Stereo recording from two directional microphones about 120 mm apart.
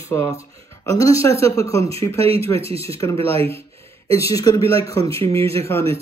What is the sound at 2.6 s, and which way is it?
Speech, 55° right (ahead or behind).